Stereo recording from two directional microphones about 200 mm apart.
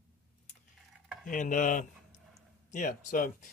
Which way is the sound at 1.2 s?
40° left (ahead or behind).